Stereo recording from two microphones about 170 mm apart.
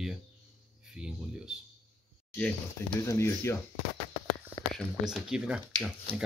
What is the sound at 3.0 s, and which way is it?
Speech, 15° left (ahead or behind).